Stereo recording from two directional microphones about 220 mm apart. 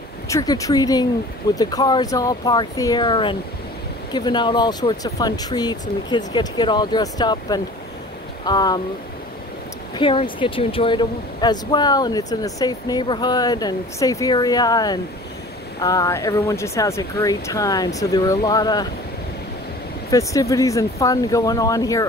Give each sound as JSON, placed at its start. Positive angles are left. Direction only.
{"t": 0.3, "sound": "speech", "side_deg": 15}
{"t": 9.9, "sound": "speech", "side_deg": 25}
{"t": 20.1, "sound": "speech", "side_deg": 15}